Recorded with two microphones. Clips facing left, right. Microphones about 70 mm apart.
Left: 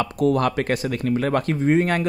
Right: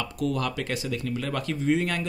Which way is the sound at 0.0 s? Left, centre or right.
Left.